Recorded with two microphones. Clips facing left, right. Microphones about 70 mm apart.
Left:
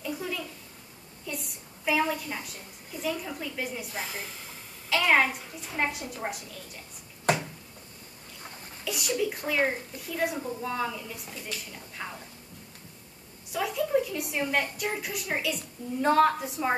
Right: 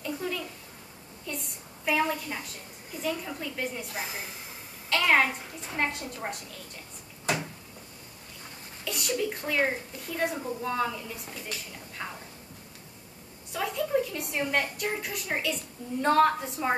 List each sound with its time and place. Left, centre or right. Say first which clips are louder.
0.0 s a sound: right 1 dB; centre
1.2 s a woman's voice: even; centre
3.9 s a woman's voice: even; centre
4.8 s a child's voice: even; centre
8.8 s a woman's voice: left 1 dB; centre
13.5 s a woman's voice: left 1 dB; centre